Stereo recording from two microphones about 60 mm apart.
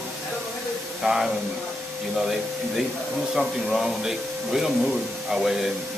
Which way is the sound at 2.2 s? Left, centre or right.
Centre.